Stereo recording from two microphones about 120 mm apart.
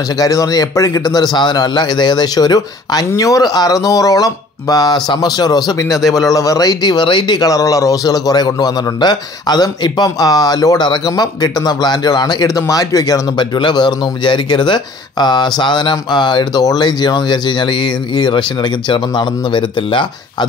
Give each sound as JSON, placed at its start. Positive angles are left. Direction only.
{"t": 0.2, "sound": "speech", "side_deg": 30}